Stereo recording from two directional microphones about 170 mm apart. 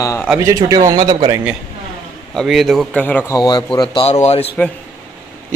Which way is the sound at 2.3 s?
Centre (ahead or behind).